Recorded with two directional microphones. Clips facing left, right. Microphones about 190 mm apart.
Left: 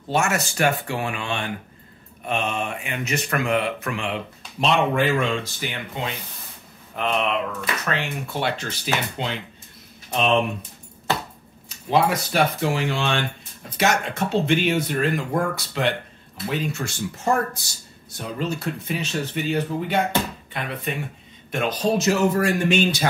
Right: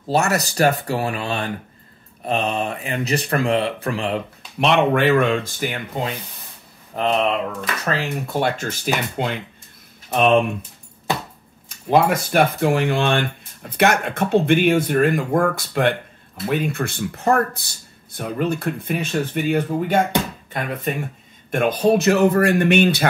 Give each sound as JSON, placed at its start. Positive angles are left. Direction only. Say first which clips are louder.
{"t": 0.1, "sound": "speech", "louder": "right 3 dB", "side_deg": -35}
{"t": 4.6, "sound": "speech", "louder": "right 3 dB", "side_deg": -65}
{"t": 11.9, "sound": "speech", "louder": "right 4 dB", "side_deg": -50}